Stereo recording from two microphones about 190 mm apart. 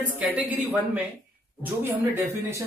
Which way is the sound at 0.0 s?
10° right (ahead or behind).